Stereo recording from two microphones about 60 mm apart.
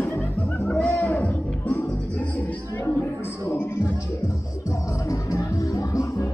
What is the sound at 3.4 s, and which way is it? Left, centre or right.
Music, left.